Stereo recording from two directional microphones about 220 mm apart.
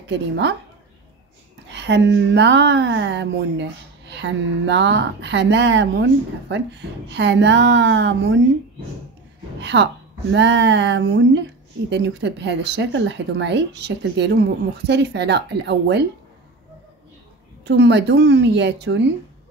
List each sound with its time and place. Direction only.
0.1 s speech: 55° right (ahead or behind)
1.7 s speech: 50° right (ahead or behind)
9.6 s speech: 55° right (ahead or behind)
17.6 s speech: 55° right (ahead or behind)